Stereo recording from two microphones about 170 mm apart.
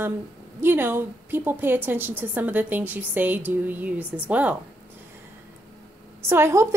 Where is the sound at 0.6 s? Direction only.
10° right (ahead or behind).